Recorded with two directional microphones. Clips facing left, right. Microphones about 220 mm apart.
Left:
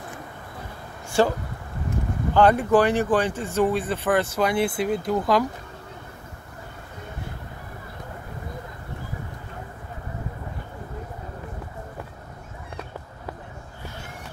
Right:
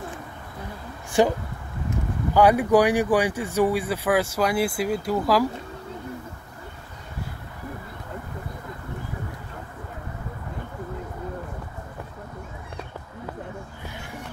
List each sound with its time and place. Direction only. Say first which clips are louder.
1.2 s speech: right 1 dB; 15° right (ahead or behind)